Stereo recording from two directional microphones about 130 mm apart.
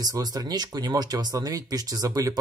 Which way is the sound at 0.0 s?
30° right (ahead or behind).